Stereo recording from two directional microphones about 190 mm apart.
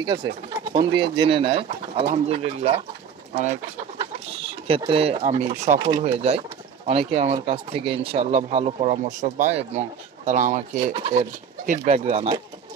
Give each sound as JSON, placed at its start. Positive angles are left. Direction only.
{"t": 0.0, "sound": "speech", "side_deg": -25}
{"t": 4.6, "sound": "speech", "side_deg": -30}